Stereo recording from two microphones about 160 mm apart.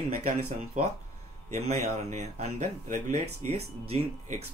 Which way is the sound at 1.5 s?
45° right (ahead or behind).